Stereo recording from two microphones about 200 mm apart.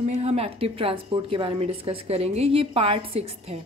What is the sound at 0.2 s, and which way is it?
A woman's voice, 30° right (ahead or behind).